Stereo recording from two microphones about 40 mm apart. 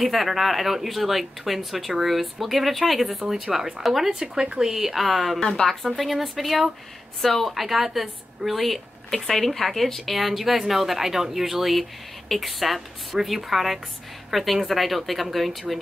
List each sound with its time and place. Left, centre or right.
0.0 s speech: centre
4.1 s speech: right; by 5.4 s centre
5.4 s a woman's voice: centre
5.9 s speech: centre